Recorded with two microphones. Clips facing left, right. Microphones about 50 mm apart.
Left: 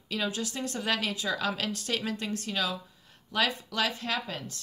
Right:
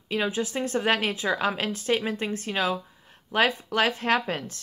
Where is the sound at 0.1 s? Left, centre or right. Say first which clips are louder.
Right 5 dB; right.